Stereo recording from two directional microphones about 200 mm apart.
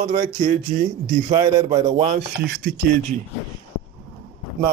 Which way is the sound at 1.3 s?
20° right (ahead or behind).